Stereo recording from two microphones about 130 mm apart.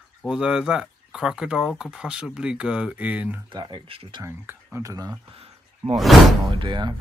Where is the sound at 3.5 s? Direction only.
35° right (ahead or behind).